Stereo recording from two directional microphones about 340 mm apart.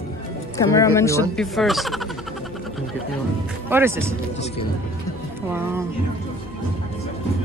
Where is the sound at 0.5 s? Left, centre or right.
Centre.